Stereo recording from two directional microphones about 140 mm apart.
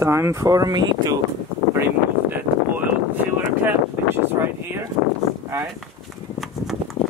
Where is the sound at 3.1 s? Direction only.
15° right (ahead or behind).